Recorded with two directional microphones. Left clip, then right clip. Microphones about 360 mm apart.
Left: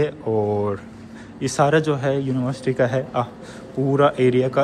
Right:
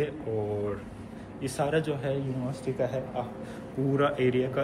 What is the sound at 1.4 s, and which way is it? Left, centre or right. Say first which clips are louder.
Speech: left 10 dB; centre.